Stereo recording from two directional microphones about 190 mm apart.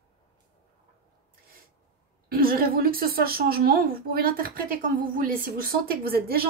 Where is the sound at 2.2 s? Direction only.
50° right (ahead or behind).